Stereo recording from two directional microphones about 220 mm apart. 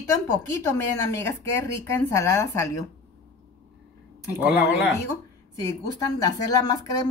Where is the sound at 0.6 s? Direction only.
10° left (ahead or behind).